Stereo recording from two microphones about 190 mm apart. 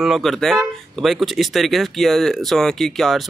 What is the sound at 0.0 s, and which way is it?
Speech, centre (ahead or behind).